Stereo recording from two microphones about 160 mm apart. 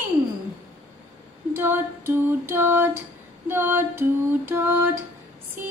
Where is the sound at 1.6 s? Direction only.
15° right (ahead or behind).